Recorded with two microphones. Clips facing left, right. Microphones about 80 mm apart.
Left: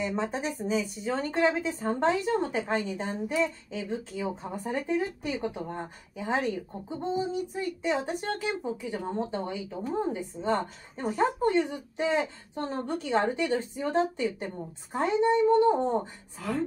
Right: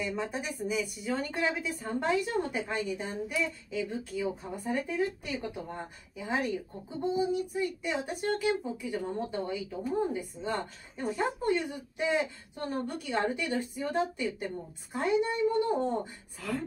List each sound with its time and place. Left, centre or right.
0.0 s a woman's voice: left
16.3 s speech: centre